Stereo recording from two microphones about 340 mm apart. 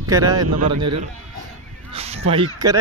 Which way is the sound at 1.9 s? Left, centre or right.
Centre.